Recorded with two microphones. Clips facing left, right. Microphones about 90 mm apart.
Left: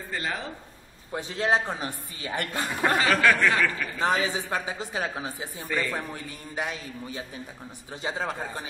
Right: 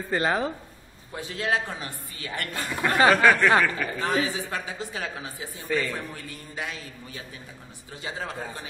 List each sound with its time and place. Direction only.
0.1 s speech: 40° right (ahead or behind)
1.1 s speech: 30° left (ahead or behind)
3.1 s speech: 25° right (ahead or behind)
4.0 s speech: 25° left (ahead or behind)